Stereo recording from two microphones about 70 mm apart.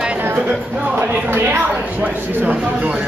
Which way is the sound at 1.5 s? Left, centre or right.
Centre.